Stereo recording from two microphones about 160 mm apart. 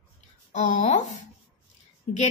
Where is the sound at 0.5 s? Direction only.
50° left (ahead or behind).